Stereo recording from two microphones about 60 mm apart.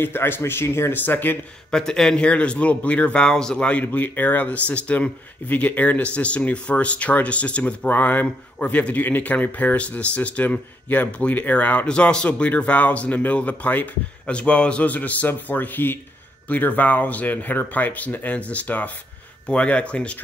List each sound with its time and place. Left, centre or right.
0.0 s speech: left
0.9 s speech: left
1.7 s speech: centre
3.8 s speech: left